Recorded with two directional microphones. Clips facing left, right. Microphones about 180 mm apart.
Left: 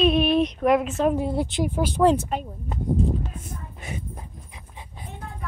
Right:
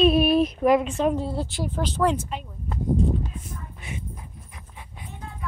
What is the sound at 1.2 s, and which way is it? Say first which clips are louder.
Speech: left 4 dB; 15° left (ahead or behind).